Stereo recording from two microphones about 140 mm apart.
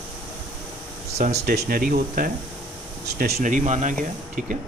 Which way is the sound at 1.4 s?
90° right.